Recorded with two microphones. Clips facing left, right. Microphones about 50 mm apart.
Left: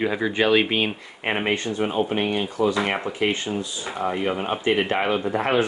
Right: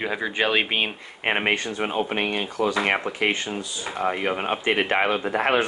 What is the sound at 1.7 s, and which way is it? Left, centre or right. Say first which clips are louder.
Speech: left 2 dB; right.